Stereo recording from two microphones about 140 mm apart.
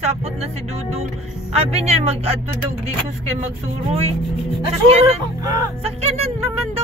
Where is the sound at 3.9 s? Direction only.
45° right (ahead or behind).